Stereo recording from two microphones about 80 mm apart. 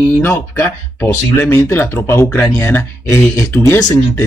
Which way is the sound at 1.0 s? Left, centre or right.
Left.